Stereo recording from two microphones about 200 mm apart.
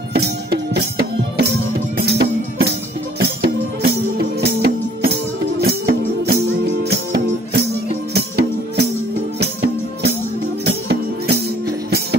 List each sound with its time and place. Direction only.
0.1 s music: 55° right (ahead or behind)